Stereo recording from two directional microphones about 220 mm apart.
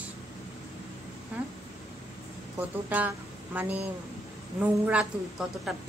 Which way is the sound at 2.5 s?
10° right (ahead or behind).